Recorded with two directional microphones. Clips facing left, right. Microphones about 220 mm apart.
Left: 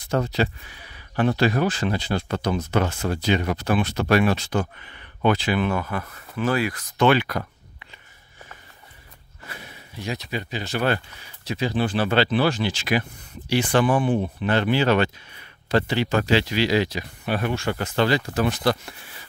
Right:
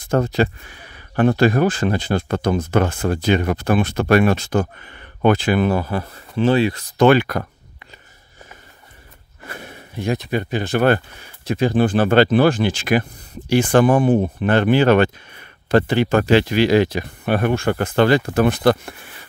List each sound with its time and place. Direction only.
0.0 s speech: 50° right (ahead or behind); by 7.1 s 30° right (ahead or behind)
7.1 s a sound: 50° right (ahead or behind)
9.5 s speech: 50° right (ahead or behind)